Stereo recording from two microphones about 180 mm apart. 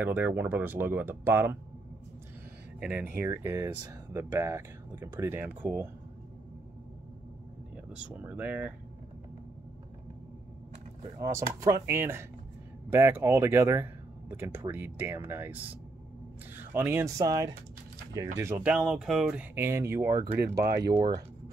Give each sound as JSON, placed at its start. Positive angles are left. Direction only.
{"t": 0.0, "sound": "speech", "side_deg": -10}
{"t": 2.8, "sound": "speech", "side_deg": -10}
{"t": 8.1, "sound": "speech", "side_deg": -10}
{"t": 11.1, "sound": "speech", "side_deg": -15}
{"t": 20.5, "sound": "speech", "side_deg": -60}